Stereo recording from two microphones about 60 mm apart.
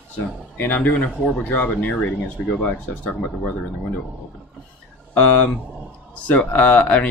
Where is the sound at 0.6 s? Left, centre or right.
Left.